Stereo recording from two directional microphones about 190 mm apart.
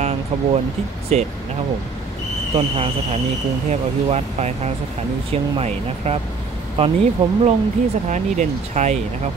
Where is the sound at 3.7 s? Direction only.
35° right (ahead or behind).